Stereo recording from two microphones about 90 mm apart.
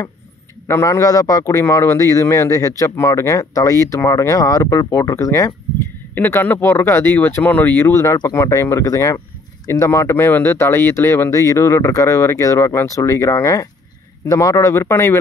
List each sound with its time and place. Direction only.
0.7 s speech: 35° left (ahead or behind)
1.4 s speech: 35° left (ahead or behind)
5.8 s speech: 25° left (ahead or behind)
7.9 s speech: 35° left (ahead or behind)